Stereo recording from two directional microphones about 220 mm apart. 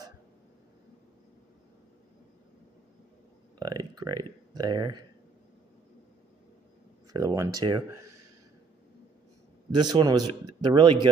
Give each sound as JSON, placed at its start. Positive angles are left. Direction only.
{"t": 3.5, "sound": "speech", "side_deg": -15}
{"t": 7.1, "sound": "speech", "side_deg": -15}
{"t": 9.7, "sound": "a man's voice", "side_deg": -20}